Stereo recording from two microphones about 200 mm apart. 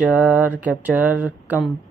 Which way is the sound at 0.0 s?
5° right (ahead or behind).